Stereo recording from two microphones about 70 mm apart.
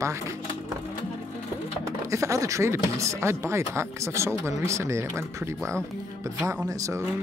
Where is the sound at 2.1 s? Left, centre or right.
Right.